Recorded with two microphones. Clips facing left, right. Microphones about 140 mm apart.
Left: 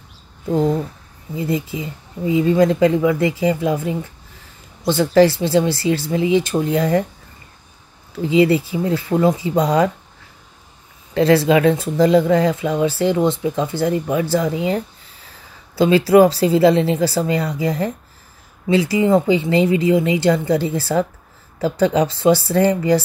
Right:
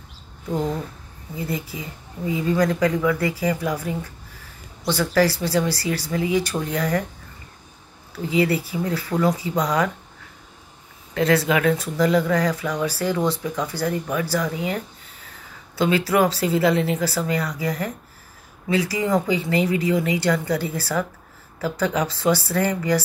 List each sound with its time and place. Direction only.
1.3 s speech: 20° left (ahead or behind)
8.1 s speech: 25° left (ahead or behind)
11.1 s speech: 30° left (ahead or behind)